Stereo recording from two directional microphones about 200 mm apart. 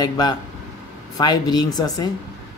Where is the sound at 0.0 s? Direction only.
20° left (ahead or behind).